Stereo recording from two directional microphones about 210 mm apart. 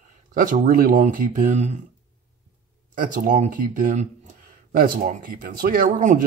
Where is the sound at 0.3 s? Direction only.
40° right (ahead or behind).